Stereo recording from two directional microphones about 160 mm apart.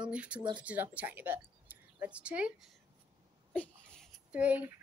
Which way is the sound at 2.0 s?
10° right (ahead or behind).